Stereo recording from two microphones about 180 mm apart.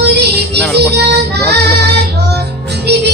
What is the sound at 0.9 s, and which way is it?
Child singing, 65° right (ahead or behind).